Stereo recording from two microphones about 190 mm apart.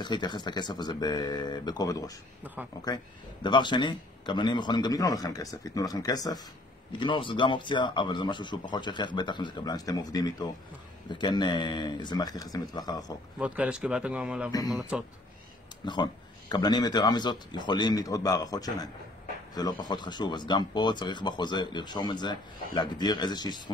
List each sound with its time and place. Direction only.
0.0 s speech: 25° left (ahead or behind)
3.4 s speech: 25° left (ahead or behind)
13.4 s speech: 5° right (ahead or behind)
15.8 s speech: 25° left (ahead or behind)